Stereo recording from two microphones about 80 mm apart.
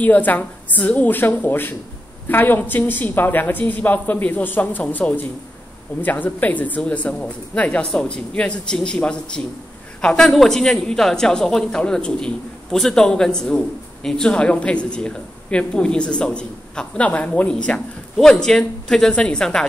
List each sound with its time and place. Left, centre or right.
0.0 s a woman's voice: left